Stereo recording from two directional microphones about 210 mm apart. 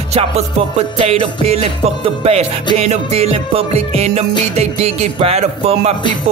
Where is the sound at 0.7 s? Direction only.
25° right (ahead or behind).